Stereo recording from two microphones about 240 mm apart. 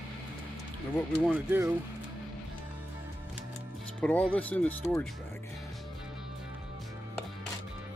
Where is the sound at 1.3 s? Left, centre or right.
Centre.